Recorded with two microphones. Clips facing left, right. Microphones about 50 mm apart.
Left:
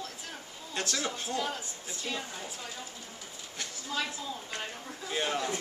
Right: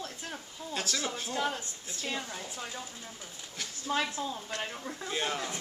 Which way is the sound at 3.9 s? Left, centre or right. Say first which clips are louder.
Right 4 dB; right.